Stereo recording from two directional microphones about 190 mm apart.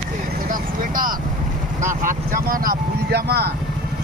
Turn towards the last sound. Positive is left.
turn(degrees=-55)  # may be behind; listen again after turning